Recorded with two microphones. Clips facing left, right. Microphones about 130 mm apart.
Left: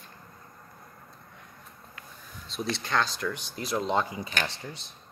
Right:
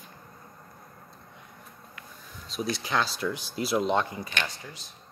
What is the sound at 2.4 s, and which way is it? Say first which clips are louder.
Speech: right 1 dB; 5° right (ahead or behind).